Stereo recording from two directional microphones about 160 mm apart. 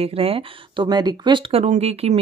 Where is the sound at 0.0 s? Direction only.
35° right (ahead or behind).